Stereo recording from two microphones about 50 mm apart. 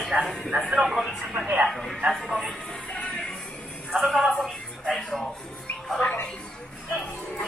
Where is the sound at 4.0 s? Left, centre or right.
Centre.